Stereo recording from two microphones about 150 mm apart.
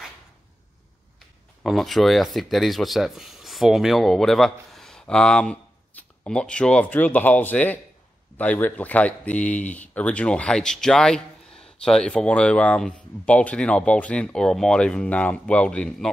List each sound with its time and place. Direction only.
1.6 s speech: centre (ahead or behind)